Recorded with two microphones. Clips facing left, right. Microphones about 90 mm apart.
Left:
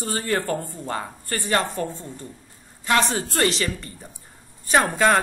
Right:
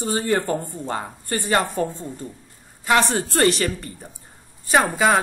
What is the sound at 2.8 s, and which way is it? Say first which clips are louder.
Speech: right 2 dB; 15° right (ahead or behind).